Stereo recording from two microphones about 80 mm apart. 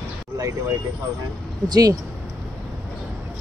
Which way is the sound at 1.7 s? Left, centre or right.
Right.